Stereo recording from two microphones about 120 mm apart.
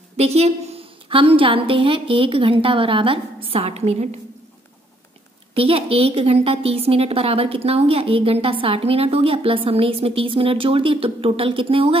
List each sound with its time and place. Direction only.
0.2 s a woman's voice: 60° right (ahead or behind)
5.5 s a woman's voice: 50° right (ahead or behind)